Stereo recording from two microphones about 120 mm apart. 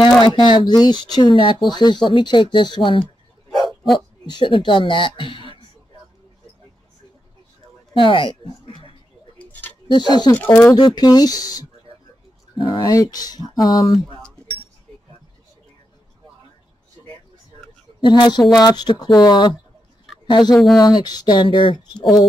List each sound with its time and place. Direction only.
0.0 s speech: 40° left (ahead or behind)
3.5 s bow-wow: centre (ahead or behind)
4.3 s speech: 40° left (ahead or behind)
8.0 s speech: 45° left (ahead or behind)
9.4 s tick-tock: 15° left (ahead or behind)
9.8 s speech: 40° left (ahead or behind)
10.3 s speech: 20° left (ahead or behind)
11.0 s speech: 35° left (ahead or behind)
12.5 s speech: 45° left (ahead or behind)
12.8 s speech: 30° left (ahead or behind)
18.0 s speech: 40° left (ahead or behind)